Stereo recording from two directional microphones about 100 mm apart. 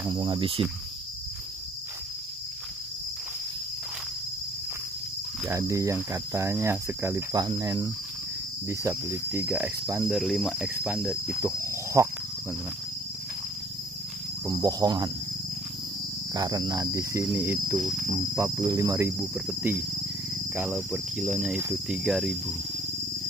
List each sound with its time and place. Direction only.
0.1 s cricket: 60° right (ahead or behind)
5.5 s speech: 30° right (ahead or behind)
7.3 s speech: 40° right (ahead or behind); by 9.7 s 25° right (ahead or behind)
10.0 s cricket: centre (ahead or behind)
10.6 s cricket: 10° right (ahead or behind)
11.3 s cricket: 30° right (ahead or behind)
14.4 s speech: 35° right (ahead or behind)
16.3 s speech: 40° right (ahead or behind)
19.3 s cricket: 15° right (ahead or behind)
20.7 s cricket: 5° right (ahead or behind)